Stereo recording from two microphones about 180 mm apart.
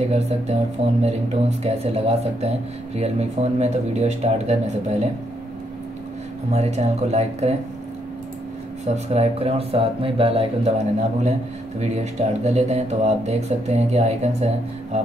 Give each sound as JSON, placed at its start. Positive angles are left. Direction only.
{"t": 0.0, "sound": "speech", "side_deg": -35}
{"t": 6.5, "sound": "speech", "side_deg": -35}
{"t": 8.8, "sound": "speech", "side_deg": -35}